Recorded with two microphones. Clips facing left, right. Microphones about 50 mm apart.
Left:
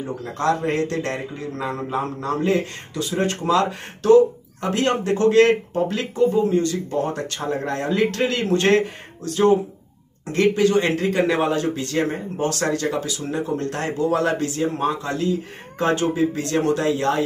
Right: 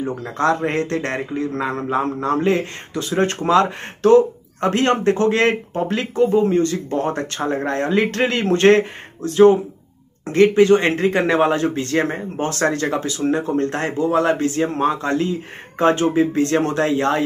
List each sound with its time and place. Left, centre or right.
0.2 s a man's voice: right